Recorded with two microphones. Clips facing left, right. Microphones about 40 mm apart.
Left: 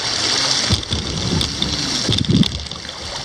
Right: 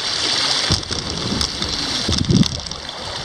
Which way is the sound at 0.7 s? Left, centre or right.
Left.